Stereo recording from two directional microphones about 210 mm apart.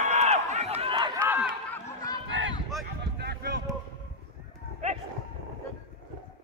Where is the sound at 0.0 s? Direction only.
30° right (ahead or behind).